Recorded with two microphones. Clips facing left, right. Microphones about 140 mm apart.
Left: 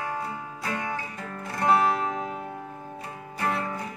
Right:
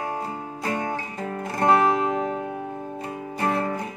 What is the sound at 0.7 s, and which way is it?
Music, 45° right (ahead or behind).